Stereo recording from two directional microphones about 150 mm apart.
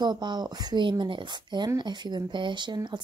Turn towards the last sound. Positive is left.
turn(degrees=-30)  # may be behind; listen again after turning